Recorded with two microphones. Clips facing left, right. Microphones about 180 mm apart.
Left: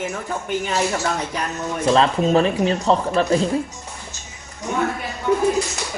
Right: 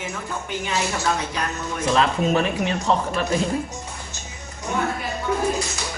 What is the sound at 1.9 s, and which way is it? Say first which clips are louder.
Speech: left 4 dB; 30° left (ahead or behind).